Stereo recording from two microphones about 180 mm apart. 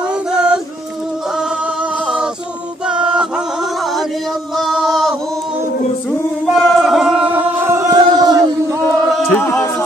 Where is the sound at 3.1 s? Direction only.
5° right (ahead or behind).